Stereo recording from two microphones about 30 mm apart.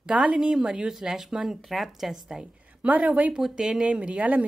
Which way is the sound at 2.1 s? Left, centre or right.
Centre.